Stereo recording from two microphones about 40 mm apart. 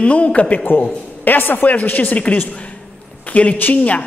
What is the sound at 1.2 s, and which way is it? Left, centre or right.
Speech, left.